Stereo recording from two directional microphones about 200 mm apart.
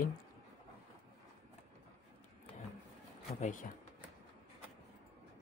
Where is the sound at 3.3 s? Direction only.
40° left (ahead or behind).